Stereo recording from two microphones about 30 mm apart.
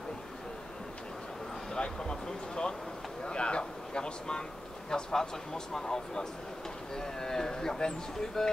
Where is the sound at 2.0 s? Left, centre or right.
Left.